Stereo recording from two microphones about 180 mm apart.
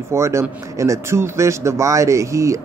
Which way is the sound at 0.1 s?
15° right (ahead or behind).